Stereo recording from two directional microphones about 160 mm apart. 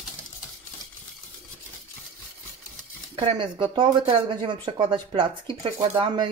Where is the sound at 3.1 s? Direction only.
35° right (ahead or behind).